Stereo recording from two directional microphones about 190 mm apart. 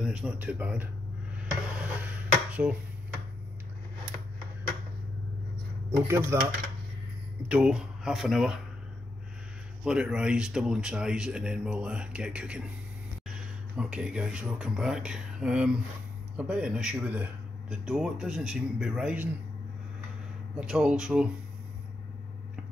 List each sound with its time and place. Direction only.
0.0 s speech: 5° right (ahead or behind)
1.4 s dishes: 5° right (ahead or behind)
5.9 s speech: 15° right (ahead or behind)
7.4 s speech: 5° right (ahead or behind)
9.8 s speech: 5° right (ahead or behind)
20.5 s speech: 5° right (ahead or behind)